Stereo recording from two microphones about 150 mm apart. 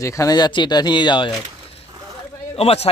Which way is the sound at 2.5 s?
40° left (ahead or behind).